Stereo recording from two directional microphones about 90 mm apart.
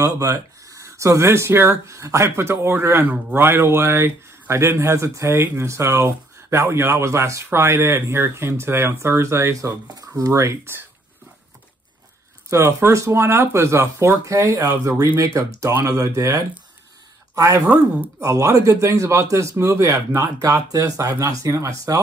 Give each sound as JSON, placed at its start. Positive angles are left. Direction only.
{"t": 0.0, "sound": "speech", "side_deg": -40}
{"t": 12.4, "sound": "speech", "side_deg": -30}